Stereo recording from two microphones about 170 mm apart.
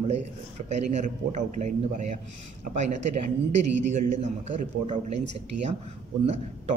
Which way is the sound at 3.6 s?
45° right (ahead or behind).